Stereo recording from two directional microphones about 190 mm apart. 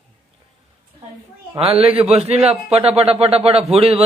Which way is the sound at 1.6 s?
30° right (ahead or behind).